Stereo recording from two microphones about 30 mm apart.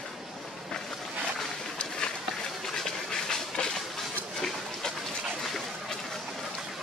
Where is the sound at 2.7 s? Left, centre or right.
Centre.